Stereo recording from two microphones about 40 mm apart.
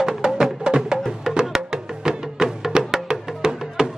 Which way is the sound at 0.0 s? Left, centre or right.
Centre.